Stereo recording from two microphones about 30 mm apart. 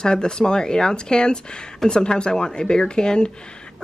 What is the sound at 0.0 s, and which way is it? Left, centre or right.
A woman's voice, left.